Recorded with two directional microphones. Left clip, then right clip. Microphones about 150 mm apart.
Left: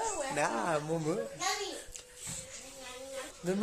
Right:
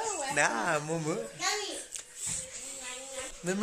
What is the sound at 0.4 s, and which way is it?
Speech, 5° left (ahead or behind).